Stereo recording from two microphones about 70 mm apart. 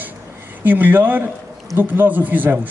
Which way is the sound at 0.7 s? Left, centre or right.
Right.